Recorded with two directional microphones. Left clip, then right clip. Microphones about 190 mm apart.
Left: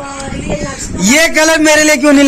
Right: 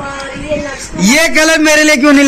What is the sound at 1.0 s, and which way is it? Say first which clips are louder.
A man's voice: even; 20° left (ahead or behind).